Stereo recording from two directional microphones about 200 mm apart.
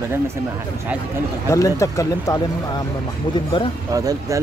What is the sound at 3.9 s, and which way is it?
Speech, 15° right (ahead or behind).